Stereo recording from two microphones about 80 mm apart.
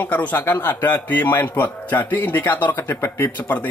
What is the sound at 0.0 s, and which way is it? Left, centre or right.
Speech, left.